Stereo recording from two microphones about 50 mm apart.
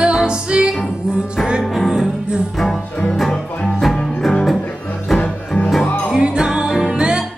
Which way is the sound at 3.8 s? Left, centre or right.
Centre.